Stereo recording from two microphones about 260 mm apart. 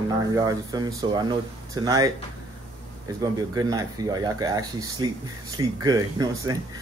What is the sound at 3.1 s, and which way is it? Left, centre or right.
Speech, centre.